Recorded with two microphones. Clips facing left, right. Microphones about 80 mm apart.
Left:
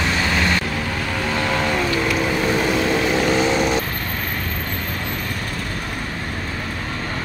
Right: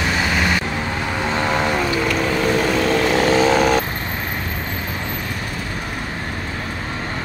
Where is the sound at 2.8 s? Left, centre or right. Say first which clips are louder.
Right 2 dB; right.